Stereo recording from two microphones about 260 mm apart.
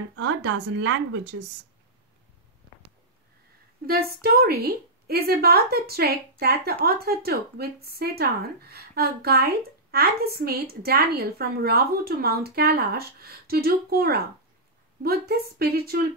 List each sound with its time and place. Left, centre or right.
0.1 s speech: right
3.8 s a woman's voice: right